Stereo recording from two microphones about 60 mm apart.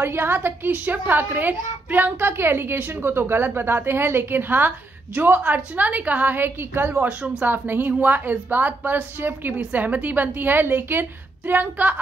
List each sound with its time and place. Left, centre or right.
0.0 s a woman's voice: right